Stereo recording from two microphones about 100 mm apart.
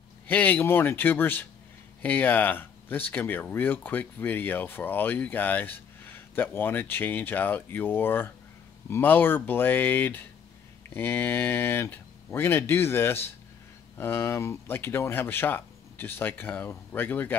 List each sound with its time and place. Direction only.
0.3 s speech: 15° left (ahead or behind)